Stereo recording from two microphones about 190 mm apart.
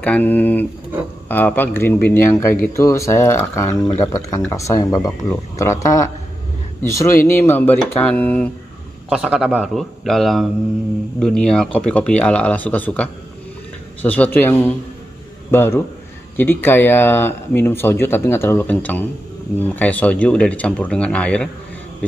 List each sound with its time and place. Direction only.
0.0 s speech: 10° left (ahead or behind)